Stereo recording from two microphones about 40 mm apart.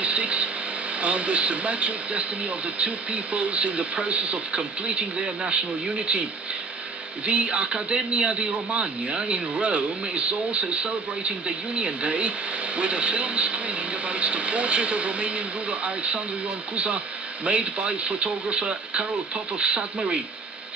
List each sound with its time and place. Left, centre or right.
0.0 s a sound: right
1.0 s a man's voice: right
7.2 s a man's voice: right